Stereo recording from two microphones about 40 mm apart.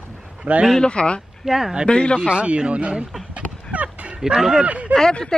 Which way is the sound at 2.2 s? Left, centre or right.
Right.